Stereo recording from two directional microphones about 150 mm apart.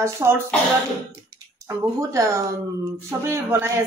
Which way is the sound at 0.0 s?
20° right (ahead or behind).